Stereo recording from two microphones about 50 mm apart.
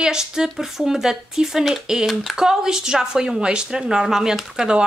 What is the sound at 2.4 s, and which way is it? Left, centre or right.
Speech, centre.